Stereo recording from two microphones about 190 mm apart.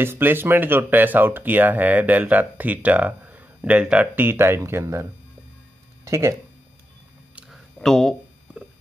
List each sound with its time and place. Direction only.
0.0 s speech: 10° right (ahead or behind)
6.0 s speech: 15° right (ahead or behind)
7.3 s a sound: centre (ahead or behind)